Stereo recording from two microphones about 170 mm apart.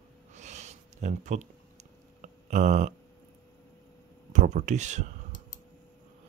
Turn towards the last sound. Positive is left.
turn(degrees=-45)  # may be behind; listen again after turning